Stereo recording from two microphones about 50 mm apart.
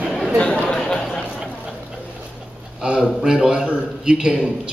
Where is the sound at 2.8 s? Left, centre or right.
Centre.